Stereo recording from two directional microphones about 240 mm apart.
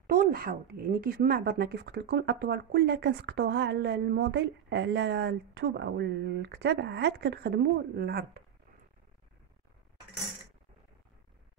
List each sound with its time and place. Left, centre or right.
0.0 s speech: right